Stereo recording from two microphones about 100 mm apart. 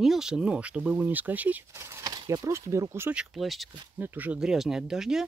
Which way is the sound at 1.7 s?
30° right (ahead or behind).